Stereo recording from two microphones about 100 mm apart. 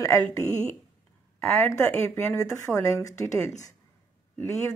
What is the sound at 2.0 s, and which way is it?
A woman's voice, 25° left (ahead or behind).